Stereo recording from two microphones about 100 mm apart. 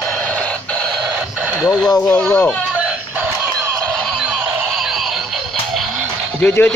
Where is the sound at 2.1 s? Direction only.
15° left (ahead or behind).